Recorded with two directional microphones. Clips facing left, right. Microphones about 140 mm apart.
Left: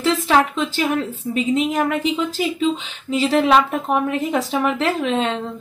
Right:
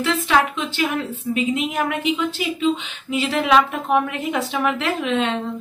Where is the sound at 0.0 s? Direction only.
35° left (ahead or behind).